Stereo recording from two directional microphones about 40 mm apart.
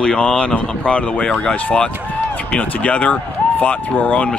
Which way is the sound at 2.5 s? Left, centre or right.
Left.